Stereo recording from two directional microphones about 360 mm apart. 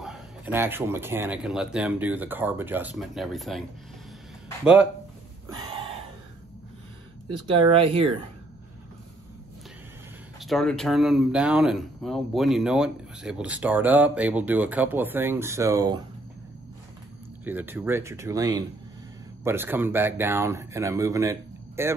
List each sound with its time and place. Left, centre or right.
0.0 s speech: centre
7.2 s speech: centre
10.4 s speech: centre
17.5 s speech: centre